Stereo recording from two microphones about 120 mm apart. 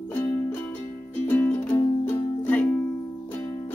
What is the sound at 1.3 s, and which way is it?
Music, 15° left (ahead or behind).